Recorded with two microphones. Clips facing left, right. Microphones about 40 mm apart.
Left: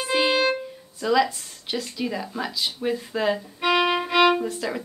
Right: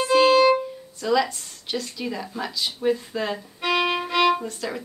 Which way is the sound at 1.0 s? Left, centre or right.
Centre.